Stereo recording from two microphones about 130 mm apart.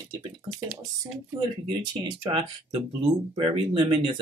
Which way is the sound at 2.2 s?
35° right (ahead or behind).